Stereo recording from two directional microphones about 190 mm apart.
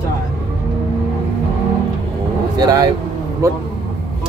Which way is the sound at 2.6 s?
20° right (ahead or behind).